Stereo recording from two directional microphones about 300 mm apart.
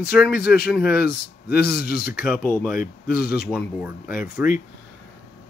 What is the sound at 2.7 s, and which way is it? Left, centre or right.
Speech, left.